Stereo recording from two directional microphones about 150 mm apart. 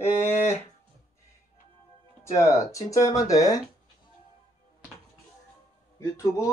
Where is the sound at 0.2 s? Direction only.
50° left (ahead or behind).